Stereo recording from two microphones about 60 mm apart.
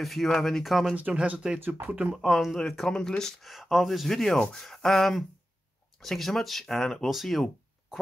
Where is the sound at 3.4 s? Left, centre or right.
Centre.